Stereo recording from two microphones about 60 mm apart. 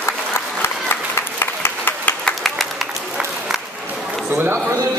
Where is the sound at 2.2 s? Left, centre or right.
Centre.